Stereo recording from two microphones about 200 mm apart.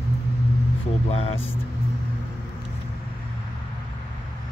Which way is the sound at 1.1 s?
30° left (ahead or behind).